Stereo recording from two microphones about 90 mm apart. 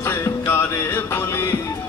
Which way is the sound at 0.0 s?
30° left (ahead or behind).